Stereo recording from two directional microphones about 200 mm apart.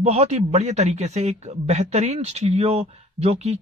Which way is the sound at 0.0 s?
30° right (ahead or behind).